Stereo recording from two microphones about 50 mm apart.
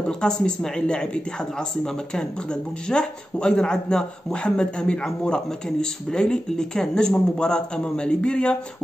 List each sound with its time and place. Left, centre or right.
0.2 s speech: centre
2.9 s speech: centre